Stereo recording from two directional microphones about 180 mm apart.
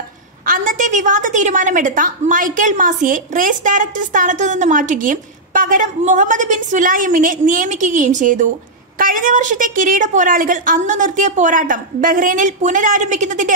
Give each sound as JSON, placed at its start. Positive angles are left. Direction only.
{"t": 0.5, "sound": "a woman's voice", "side_deg": -45}